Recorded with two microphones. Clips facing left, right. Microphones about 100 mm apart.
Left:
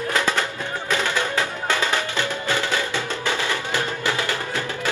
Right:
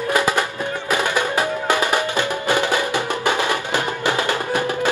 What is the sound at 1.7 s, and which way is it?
Music, 15° right (ahead or behind).